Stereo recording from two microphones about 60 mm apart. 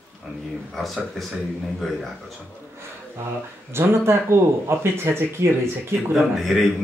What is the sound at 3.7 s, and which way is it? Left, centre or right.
Speech, right.